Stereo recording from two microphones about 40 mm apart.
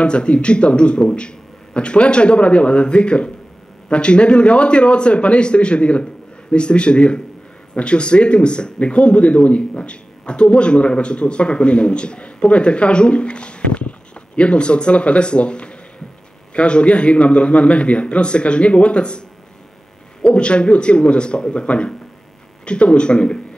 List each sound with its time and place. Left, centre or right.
0.0 s speech: left